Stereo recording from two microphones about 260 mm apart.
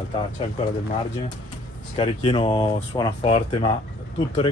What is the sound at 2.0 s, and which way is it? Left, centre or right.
Speech, centre.